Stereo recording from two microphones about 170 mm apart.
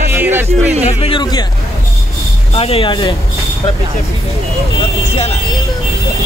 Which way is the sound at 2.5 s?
35° left (ahead or behind).